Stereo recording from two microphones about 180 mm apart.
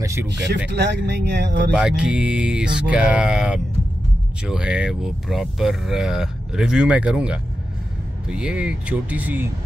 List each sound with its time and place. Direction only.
0.0 s speech: 15° right (ahead or behind)
0.7 s speech: 70° right (ahead or behind)
1.7 s speech: 5° right (ahead or behind)